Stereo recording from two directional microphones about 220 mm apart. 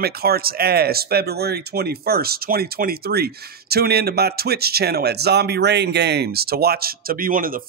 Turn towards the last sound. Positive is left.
turn(degrees=-40)  # may be behind; listen again after turning